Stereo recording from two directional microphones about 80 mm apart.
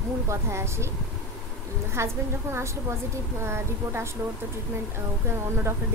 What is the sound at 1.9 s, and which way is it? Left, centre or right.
A woman's voice, right.